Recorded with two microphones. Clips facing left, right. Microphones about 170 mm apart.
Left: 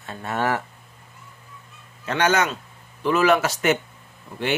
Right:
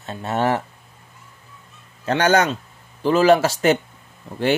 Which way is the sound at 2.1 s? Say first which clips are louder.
Right 4 dB; 35° right (ahead or behind).